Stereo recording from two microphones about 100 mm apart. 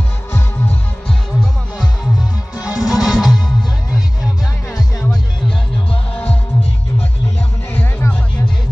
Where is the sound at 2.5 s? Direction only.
10° right (ahead or behind).